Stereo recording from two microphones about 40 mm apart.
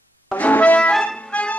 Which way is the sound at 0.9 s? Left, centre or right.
Centre.